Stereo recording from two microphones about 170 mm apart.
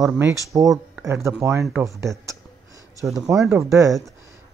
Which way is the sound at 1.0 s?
15° right (ahead or behind).